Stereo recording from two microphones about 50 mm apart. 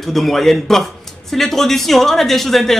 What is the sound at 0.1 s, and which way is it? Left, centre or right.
A man's voice, centre.